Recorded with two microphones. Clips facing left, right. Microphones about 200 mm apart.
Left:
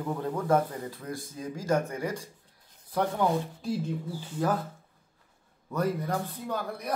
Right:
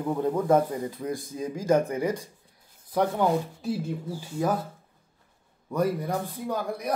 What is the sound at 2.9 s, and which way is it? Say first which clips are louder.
Speech: right 3 dB; 5° right (ahead or behind).